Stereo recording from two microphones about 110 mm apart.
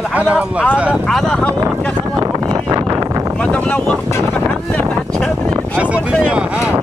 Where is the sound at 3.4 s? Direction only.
10° left (ahead or behind).